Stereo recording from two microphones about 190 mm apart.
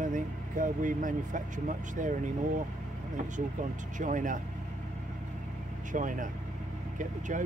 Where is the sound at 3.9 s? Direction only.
40° right (ahead or behind).